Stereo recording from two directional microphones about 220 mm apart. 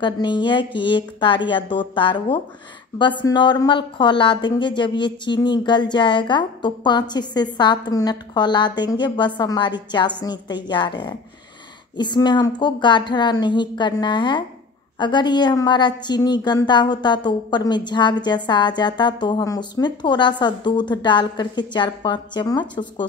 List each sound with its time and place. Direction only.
0.0 s speech: 20° left (ahead or behind)